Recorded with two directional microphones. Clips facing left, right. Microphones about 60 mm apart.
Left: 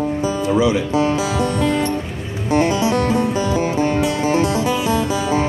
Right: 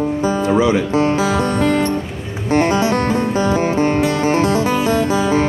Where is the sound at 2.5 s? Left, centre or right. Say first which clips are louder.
Right 2 dB; right.